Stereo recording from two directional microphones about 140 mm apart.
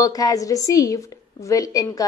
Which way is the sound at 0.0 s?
25° left (ahead or behind).